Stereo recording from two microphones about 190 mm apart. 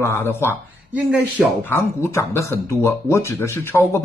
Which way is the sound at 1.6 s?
15° left (ahead or behind).